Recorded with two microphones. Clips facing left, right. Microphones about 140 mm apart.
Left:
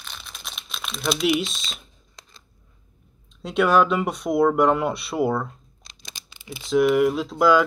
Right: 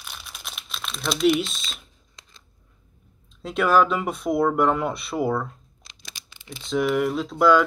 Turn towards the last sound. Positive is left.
turn(degrees=5)  # may be behind; listen again after turning